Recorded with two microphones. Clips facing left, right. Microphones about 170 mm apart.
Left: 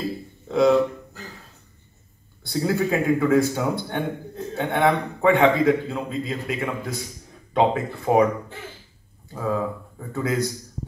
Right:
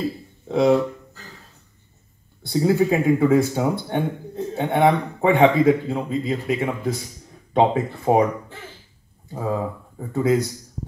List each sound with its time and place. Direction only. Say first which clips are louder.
0.5 s speech: right 1 dB; 30° right (ahead or behind)
2.4 s speech: right 4 dB; 30° right (ahead or behind)
9.3 s speech: even; 25° right (ahead or behind)